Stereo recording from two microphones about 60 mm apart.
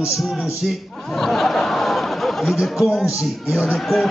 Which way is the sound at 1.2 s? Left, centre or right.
Centre.